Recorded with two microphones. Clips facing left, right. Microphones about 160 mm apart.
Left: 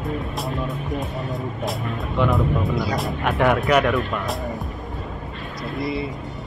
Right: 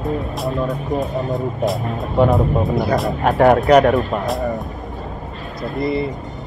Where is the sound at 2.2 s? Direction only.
40° right (ahead or behind).